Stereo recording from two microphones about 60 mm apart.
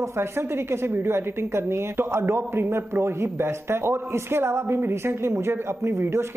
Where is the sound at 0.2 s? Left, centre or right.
Right.